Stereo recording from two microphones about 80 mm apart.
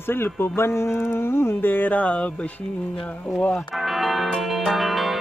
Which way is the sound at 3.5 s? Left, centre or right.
Centre.